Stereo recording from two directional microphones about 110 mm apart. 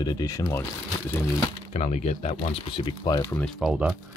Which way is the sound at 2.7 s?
55° left (ahead or behind).